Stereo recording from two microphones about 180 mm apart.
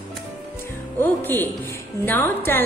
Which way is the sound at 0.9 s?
10° left (ahead or behind).